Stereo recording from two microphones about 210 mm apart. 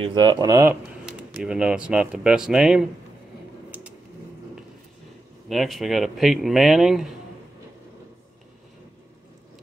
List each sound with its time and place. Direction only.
0.0 s speech: 20° right (ahead or behind)
1.4 s speech: 5° right (ahead or behind)
5.5 s speech: centre (ahead or behind)